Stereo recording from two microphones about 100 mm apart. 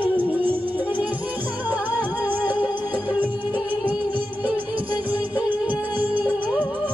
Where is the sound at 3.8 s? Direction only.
15° right (ahead or behind).